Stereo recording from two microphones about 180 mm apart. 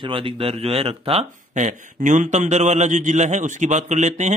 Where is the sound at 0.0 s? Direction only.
30° right (ahead or behind).